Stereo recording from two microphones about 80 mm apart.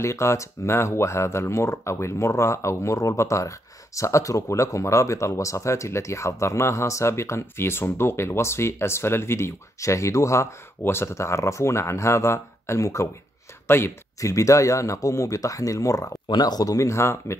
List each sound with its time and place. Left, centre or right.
0.0 s speech: left
16.3 s speech: left